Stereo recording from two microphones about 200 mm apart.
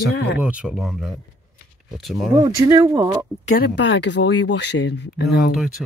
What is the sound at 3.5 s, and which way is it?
Speech, 55° left (ahead or behind).